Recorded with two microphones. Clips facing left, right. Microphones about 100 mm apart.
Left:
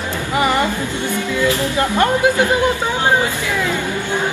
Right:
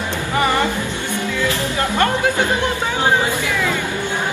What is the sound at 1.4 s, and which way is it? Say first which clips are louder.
Music: left 5 dB; 20° left (ahead or behind).